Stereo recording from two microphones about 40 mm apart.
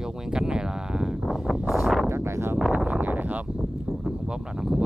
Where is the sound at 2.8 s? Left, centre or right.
Right.